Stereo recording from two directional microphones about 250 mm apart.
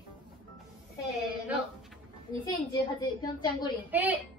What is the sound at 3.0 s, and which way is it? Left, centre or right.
Speech, centre.